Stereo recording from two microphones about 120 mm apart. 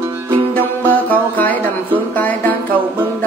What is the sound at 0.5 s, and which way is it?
Music, 15° left (ahead or behind).